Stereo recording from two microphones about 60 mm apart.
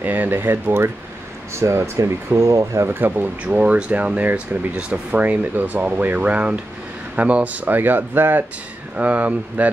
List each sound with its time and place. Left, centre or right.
0.0 s speech: right
1.5 s speech: right
2.9 s speech: right
3.4 s speech: right